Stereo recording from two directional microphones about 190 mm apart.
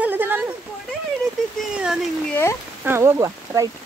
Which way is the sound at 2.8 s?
15° right (ahead or behind).